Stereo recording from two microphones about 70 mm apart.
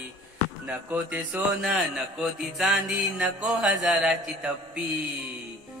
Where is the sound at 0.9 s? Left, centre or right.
Right.